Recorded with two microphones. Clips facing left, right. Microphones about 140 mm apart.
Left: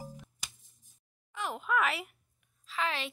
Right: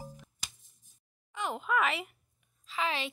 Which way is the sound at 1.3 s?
Centre (ahead or behind).